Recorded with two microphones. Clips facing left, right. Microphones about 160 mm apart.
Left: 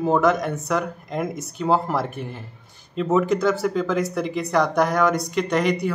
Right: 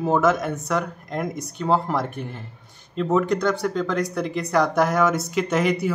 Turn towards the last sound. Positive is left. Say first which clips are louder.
# even
turn(degrees=-5)  # may be behind; listen again after turning